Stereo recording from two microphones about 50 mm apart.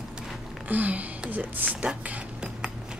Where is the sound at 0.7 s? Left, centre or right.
Right.